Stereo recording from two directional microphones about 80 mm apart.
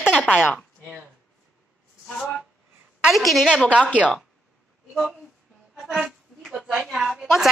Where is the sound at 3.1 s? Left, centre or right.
Centre.